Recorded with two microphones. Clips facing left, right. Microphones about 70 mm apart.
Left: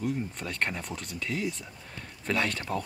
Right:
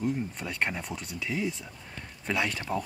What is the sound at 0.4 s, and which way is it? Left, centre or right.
Speech, centre.